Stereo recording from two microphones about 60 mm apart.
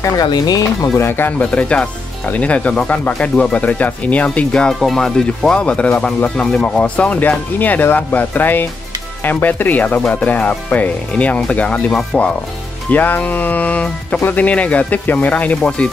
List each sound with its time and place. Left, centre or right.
0.0 s speech: left
0.9 s speech: left
1.4 s speech: left
4.7 s speech: centre
12.9 s speech: left